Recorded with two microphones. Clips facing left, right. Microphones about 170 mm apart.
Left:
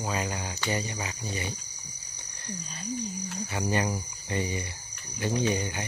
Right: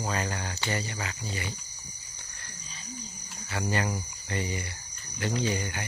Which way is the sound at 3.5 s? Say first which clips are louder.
Left 1 dB; 20° left (ahead or behind).